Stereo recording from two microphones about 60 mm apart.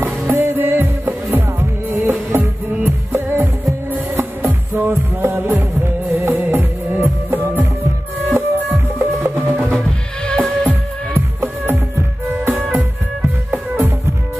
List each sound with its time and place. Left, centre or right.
0.0 s music: right
9.8 s music: centre
11.1 s music: right